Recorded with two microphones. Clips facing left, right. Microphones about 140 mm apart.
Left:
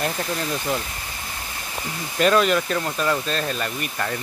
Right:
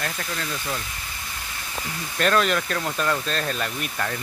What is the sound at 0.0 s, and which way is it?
Speech, 20° left (ahead or behind).